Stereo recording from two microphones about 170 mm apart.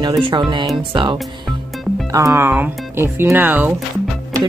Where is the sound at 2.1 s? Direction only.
15° right (ahead or behind).